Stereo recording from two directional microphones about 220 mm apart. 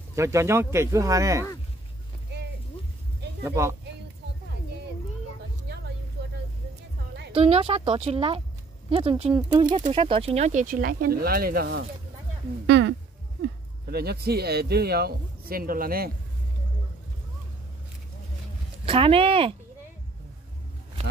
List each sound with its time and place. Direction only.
0.1 s speech: 15° right (ahead or behind)
3.4 s speech: 10° right (ahead or behind)
7.3 s speech: 25° right (ahead or behind); by 11.8 s 45° right (ahead or behind)
12.6 s a sound: 50° right (ahead or behind)
13.8 s speech: 45° right (ahead or behind)
18.9 s speech: 25° right (ahead or behind)